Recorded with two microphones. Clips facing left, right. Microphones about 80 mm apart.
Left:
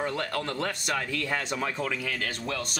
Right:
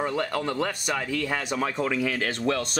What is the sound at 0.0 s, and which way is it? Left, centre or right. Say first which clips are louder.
Speech: right 3 dB; centre.